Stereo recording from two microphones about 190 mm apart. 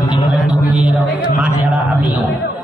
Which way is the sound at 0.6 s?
5° right (ahead or behind).